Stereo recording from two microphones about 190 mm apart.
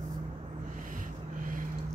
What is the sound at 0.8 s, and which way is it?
Vehicle, 45° right (ahead or behind).